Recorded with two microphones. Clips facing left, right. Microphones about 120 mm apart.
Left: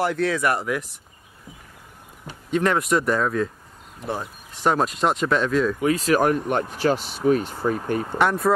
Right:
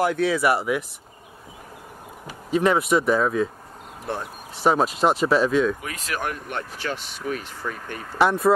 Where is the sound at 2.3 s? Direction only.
5° right (ahead or behind).